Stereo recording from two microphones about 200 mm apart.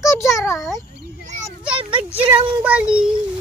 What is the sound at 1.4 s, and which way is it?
Speech, 5° right (ahead or behind).